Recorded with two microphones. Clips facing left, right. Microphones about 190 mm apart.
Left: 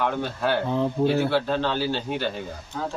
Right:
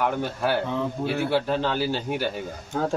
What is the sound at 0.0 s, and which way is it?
A man's voice, 10° right (ahead or behind).